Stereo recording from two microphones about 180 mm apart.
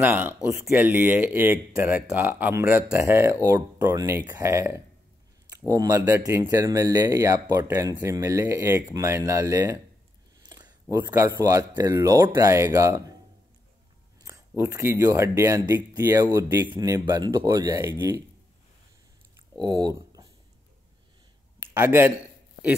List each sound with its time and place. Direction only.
0.0 s speech: 10° right (ahead or behind)
14.2 s speech: 15° right (ahead or behind)
19.6 s speech: 20° right (ahead or behind)
21.6 s speech: 15° right (ahead or behind)